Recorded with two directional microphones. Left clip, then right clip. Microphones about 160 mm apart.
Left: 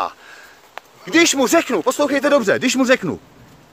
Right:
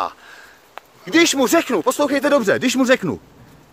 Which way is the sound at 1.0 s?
10° right (ahead or behind).